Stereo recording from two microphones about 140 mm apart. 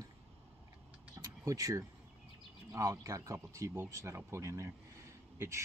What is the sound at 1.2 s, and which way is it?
Speech, 25° right (ahead or behind).